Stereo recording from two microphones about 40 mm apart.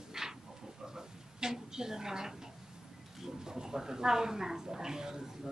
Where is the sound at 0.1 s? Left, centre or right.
Centre.